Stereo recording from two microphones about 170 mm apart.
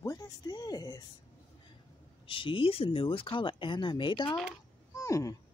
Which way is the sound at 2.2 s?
30° left (ahead or behind).